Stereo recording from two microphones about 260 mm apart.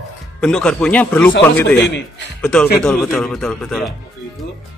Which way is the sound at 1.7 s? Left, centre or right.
Left.